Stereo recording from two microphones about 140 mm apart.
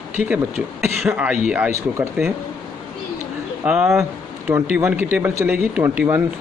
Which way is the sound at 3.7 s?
5° right (ahead or behind).